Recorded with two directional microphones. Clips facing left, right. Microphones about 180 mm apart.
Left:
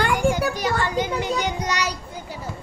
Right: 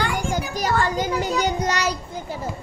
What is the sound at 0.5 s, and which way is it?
Speech, 45° right (ahead or behind).